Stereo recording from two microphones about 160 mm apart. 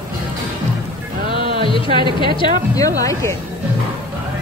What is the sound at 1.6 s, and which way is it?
A woman's voice, 30° left (ahead or behind).